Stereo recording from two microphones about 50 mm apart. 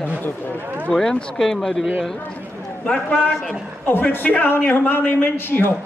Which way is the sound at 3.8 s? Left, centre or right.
Left.